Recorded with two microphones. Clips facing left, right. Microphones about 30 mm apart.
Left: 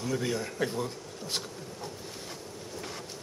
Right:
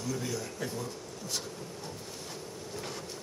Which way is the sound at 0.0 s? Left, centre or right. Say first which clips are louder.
Left 4 dB; left.